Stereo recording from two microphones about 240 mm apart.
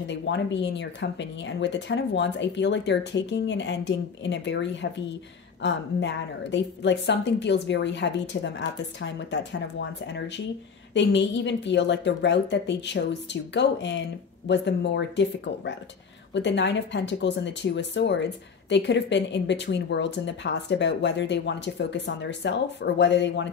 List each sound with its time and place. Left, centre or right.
0.0 s speech: left